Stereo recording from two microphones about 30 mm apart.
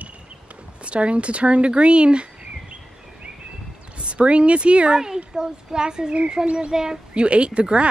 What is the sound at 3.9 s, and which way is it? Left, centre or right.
Speech, right.